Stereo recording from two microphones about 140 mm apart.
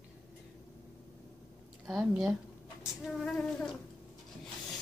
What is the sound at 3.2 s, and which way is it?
Child singing, 5° left (ahead or behind).